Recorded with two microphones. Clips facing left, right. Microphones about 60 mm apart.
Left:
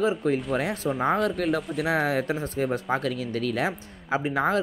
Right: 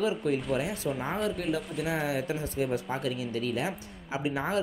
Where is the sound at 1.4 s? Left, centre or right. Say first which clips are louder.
Left 5 dB; left.